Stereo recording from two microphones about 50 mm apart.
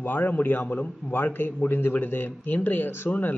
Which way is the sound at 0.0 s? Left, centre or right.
Left.